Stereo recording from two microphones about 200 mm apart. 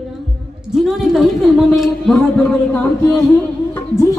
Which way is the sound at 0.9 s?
Centre (ahead or behind).